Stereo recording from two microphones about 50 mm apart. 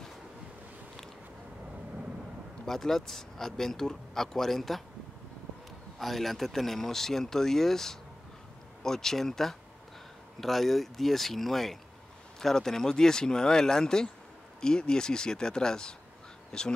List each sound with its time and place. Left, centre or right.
2.6 s speech: centre
5.9 s speech: centre